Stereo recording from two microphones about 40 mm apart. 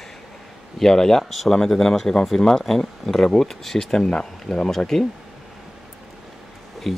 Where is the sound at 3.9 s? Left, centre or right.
Centre.